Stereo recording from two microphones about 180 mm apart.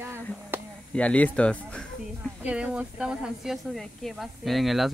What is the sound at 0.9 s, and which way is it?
Speech, 10° left (ahead or behind).